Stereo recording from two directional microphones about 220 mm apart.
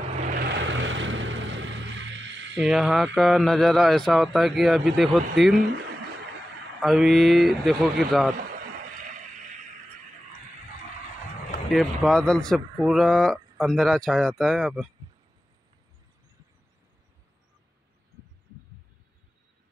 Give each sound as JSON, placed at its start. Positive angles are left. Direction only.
{"t": 0.3, "sound": "vehicle", "side_deg": -45}
{"t": 2.6, "sound": "speech", "side_deg": 0}
{"t": 6.8, "sound": "speech", "side_deg": 0}
{"t": 11.7, "sound": "speech", "side_deg": 0}